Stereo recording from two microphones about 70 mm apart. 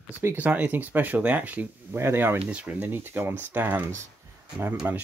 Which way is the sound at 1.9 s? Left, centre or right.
Right.